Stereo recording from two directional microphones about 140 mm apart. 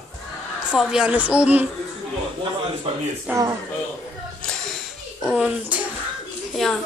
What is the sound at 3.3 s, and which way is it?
Speech, 25° right (ahead or behind).